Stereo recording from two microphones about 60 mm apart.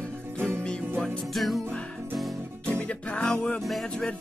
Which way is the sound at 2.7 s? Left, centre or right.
Left.